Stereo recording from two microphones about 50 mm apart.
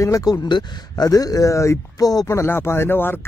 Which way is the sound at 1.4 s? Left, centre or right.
Left.